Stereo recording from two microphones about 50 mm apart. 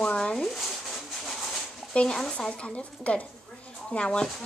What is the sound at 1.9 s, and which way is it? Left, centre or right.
A woman's voice, left.